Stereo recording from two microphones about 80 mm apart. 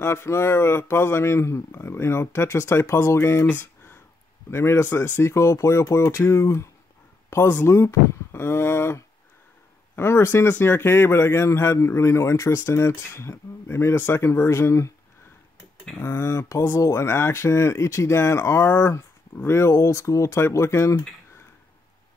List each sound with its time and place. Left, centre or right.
0.0 s speech: left
3.4 s a sound: left
4.5 s speech: left
5.3 s speech: left
16.0 s speech: left